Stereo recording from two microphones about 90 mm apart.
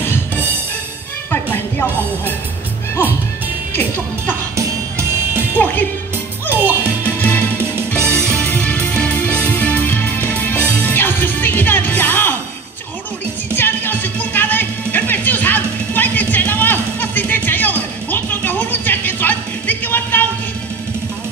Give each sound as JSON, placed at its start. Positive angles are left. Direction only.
{"t": 1.3, "sound": "speech", "side_deg": 20}
{"t": 4.6, "sound": "music", "side_deg": -30}
{"t": 7.2, "sound": "music", "side_deg": 20}
{"t": 8.0, "sound": "music", "side_deg": -30}
{"t": 8.5, "sound": "music", "side_deg": 15}
{"t": 13.6, "sound": "music", "side_deg": 20}